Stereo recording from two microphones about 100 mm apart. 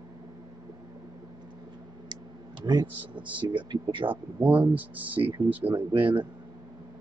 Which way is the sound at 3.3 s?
55° right (ahead or behind).